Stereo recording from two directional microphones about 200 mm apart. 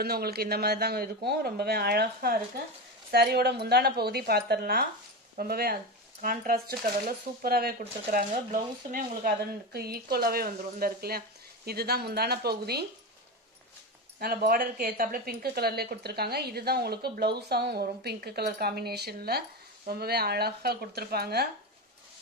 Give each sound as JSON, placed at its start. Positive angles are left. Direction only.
{"t": 0.0, "sound": "speech", "side_deg": -50}
{"t": 14.2, "sound": "speech", "side_deg": -45}